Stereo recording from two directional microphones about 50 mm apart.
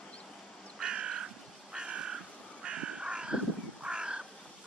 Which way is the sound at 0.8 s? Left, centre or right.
Centre.